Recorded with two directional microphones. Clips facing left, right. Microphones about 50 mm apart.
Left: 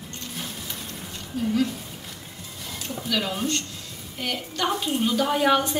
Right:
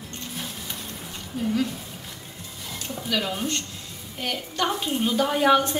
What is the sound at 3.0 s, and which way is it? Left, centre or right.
A woman's voice, centre.